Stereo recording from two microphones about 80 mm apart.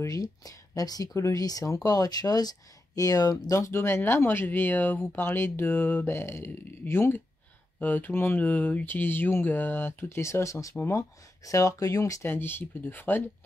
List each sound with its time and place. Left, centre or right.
0.0 s speech: left
12.2 s speech: left